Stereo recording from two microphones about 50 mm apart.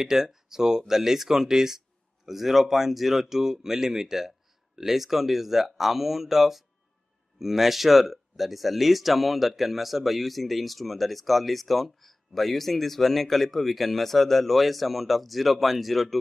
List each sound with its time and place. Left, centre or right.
0.0 s speech: centre